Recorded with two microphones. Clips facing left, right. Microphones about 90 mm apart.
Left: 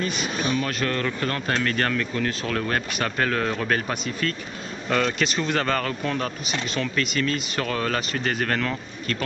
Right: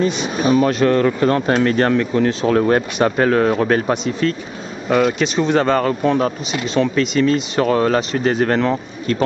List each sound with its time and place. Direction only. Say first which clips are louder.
0.4 s speech: right 11 dB; 40° right (ahead or behind)
0.7 s speech: right 11 dB; 30° right (ahead or behind)
4.2 s speech: right 8 dB; 15° right (ahead or behind); by 5.6 s centre (ahead or behind)
5.7 s speech: right 9 dB; 20° right (ahead or behind)